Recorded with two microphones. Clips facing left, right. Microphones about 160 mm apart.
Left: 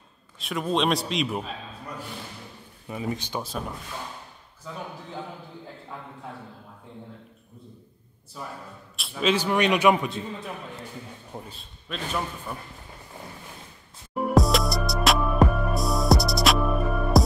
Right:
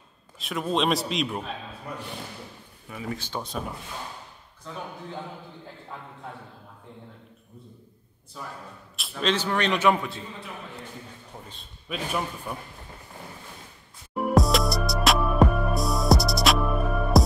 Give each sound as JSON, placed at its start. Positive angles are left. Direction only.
{"t": 0.4, "sound": "a man's voice", "side_deg": 0}
{"t": 2.9, "sound": "speech", "side_deg": 20}
{"t": 3.4, "sound": "a man's voice", "side_deg": 0}
{"t": 8.4, "sound": "a man's voice", "side_deg": 0}
{"t": 11.3, "sound": "a sound", "side_deg": 20}
{"t": 11.9, "sound": "speech", "side_deg": -5}
{"t": 14.3, "sound": "music", "side_deg": 0}